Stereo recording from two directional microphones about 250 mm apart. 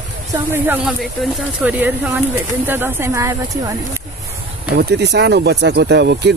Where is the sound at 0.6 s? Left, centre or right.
Centre.